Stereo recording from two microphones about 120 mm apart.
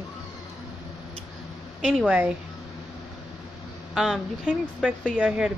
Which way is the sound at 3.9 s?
5° right (ahead or behind).